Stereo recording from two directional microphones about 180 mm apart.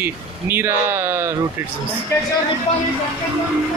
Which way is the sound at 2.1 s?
15° left (ahead or behind).